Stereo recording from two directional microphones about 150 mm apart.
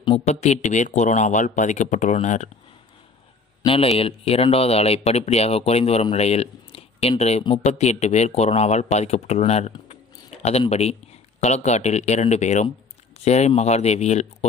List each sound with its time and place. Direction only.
0.2 s speech: 50° left (ahead or behind)
3.6 s speech: 40° left (ahead or behind)